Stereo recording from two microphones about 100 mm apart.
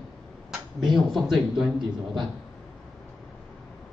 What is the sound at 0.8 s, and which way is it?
Speech, centre (ahead or behind).